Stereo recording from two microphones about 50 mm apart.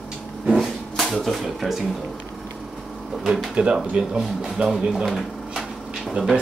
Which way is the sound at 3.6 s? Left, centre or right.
Right.